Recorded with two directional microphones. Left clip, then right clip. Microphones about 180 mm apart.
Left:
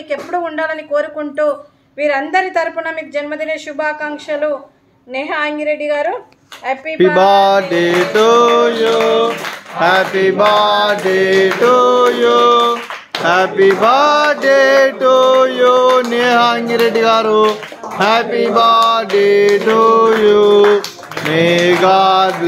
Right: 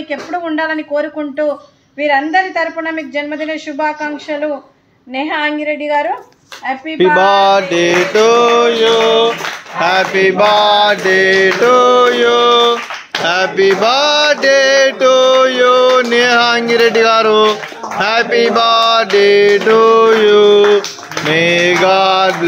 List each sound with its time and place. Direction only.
0.5 s speech: 20° left (ahead or behind)
2.3 s speech: 20° left (ahead or behind)
5.1 s speech: 20° left (ahead or behind)
6.6 s music: 20° left (ahead or behind); by 9.3 s 5° left (ahead or behind)
9.8 s mantra: 5° left (ahead or behind)